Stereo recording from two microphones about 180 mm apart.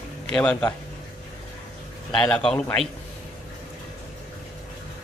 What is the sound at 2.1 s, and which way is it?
Speech, 5° left (ahead or behind).